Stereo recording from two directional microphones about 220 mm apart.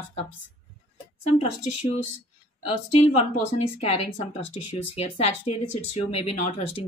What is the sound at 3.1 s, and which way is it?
Speech, 30° left (ahead or behind).